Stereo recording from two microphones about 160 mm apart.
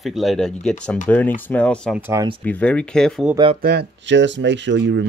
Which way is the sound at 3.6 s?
80° right.